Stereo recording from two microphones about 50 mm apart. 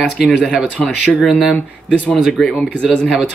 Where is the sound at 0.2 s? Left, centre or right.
Centre.